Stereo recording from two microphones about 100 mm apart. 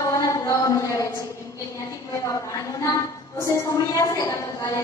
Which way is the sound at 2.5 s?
35° left (ahead or behind).